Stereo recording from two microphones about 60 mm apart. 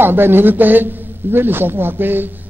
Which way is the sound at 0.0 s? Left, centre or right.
Right.